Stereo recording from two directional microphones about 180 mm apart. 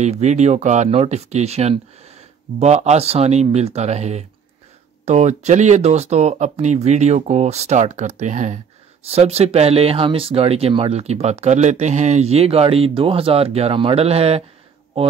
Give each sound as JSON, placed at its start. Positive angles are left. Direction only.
{"t": 0.0, "sound": "speech", "side_deg": -40}